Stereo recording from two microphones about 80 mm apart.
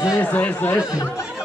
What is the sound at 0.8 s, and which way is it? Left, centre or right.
Speech, left.